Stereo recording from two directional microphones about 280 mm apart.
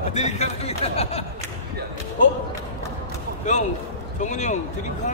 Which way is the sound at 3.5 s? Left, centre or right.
Left.